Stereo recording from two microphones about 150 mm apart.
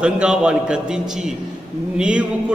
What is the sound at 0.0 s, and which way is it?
A man's voice, 5° right (ahead or behind).